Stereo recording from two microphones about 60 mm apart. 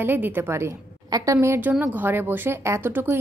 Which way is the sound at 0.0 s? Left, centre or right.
Right.